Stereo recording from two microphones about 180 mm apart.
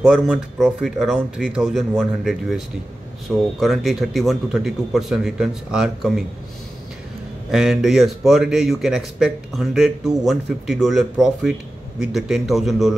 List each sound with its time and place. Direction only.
0.0 s speech: 5° right (ahead or behind)
7.5 s speech: centre (ahead or behind)